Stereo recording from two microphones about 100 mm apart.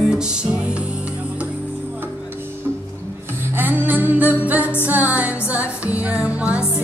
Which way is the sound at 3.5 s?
20° right (ahead or behind).